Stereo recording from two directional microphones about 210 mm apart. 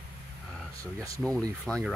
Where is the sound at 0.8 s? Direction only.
15° right (ahead or behind).